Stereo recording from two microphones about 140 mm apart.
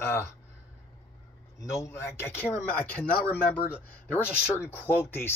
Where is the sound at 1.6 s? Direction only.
20° left (ahead or behind).